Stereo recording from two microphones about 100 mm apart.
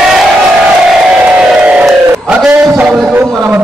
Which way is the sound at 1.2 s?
10° right (ahead or behind).